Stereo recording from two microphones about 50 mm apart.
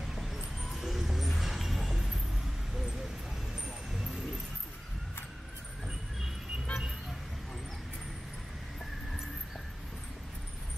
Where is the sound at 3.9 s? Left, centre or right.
Centre.